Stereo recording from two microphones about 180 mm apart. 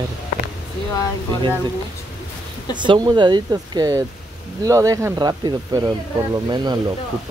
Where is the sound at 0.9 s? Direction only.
20° left (ahead or behind).